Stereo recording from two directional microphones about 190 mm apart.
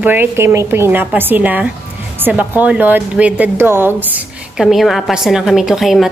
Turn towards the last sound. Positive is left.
turn(degrees=0)  # may be behind; listen again after turning